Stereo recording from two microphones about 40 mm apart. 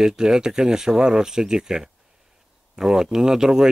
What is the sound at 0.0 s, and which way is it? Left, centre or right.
Speech, centre.